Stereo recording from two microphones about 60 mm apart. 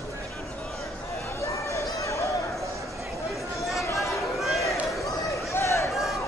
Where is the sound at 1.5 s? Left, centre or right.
Left.